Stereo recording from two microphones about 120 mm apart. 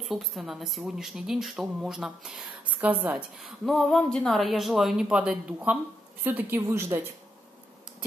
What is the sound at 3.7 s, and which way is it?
A woman's voice, 5° left (ahead or behind).